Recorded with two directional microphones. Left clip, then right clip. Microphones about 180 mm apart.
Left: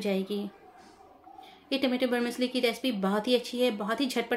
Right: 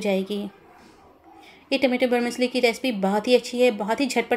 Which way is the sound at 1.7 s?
15° right (ahead or behind).